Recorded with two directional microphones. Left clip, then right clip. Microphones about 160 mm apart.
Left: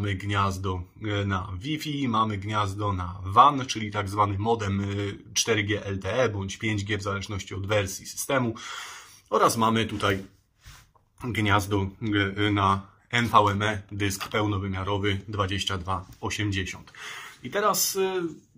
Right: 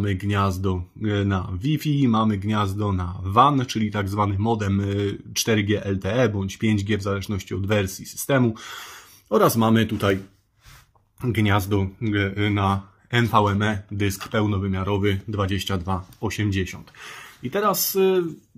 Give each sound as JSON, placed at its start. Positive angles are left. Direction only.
{"t": 0.0, "sound": "speech", "side_deg": -30}
{"t": 11.1, "sound": "speech", "side_deg": -15}